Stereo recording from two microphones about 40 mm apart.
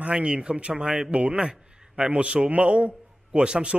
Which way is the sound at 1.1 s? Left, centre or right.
Right.